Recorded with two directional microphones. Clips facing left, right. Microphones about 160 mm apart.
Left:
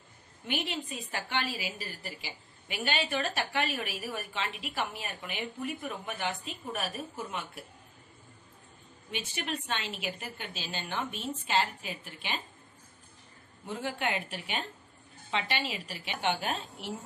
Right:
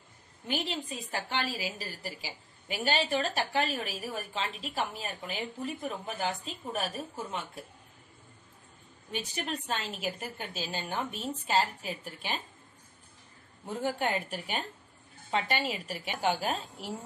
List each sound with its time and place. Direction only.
0.5 s a woman's voice: 35° right (ahead or behind)
9.1 s a woman's voice: 40° right (ahead or behind)
13.8 s a woman's voice: 40° right (ahead or behind)